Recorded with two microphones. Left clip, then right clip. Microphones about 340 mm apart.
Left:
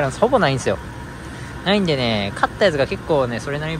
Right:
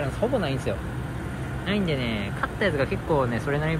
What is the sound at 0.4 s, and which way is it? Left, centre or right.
Speech, centre.